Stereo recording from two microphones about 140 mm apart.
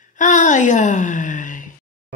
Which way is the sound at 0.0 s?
65° left (ahead or behind).